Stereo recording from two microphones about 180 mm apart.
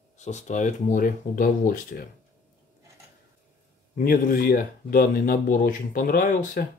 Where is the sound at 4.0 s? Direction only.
55° left (ahead or behind).